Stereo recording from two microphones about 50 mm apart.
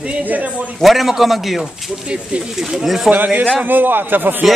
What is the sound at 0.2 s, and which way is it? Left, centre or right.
Speech, right.